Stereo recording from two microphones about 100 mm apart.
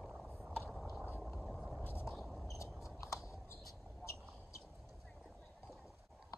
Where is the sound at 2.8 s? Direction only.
30° left (ahead or behind).